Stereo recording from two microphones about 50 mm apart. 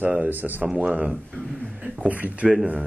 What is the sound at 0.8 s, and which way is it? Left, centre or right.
Speech, right.